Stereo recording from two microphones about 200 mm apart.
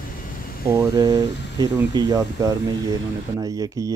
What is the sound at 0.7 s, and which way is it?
Speech, 15° right (ahead or behind).